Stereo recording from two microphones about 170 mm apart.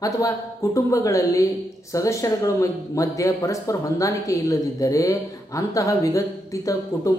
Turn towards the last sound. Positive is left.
turn(degrees=20)  # may be behind; listen again after turning